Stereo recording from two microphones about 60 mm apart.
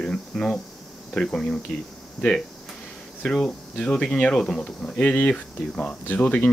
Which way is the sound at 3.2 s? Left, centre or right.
Centre.